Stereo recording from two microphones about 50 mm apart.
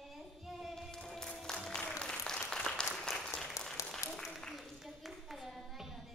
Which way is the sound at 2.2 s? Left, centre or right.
Centre.